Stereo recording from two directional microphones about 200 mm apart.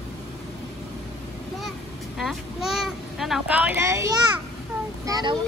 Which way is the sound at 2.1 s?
Centre (ahead or behind).